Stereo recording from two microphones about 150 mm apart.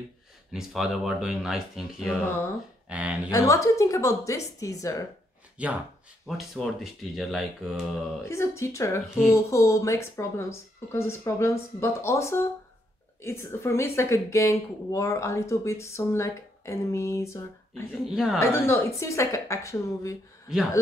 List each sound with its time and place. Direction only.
0.5 s speech: 5° right (ahead or behind)
3.3 s a woman's voice: 20° left (ahead or behind)
5.6 s speech: 10° right (ahead or behind)
8.3 s a woman's voice: 20° left (ahead or behind)
17.9 s speech: centre (ahead or behind)
18.4 s a woman's voice: 15° left (ahead or behind)